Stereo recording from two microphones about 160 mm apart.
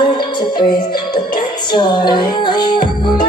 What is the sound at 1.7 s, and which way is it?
Music, 30° left (ahead or behind).